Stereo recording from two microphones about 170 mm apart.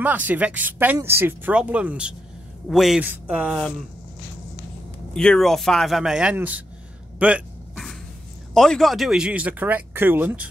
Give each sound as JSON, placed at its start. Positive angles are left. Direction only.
{"t": 0.0, "sound": "speech", "side_deg": -10}
{"t": 5.1, "sound": "speech", "side_deg": 5}
{"t": 7.2, "sound": "a sound", "side_deg": -5}
{"t": 8.5, "sound": "speech", "side_deg": 0}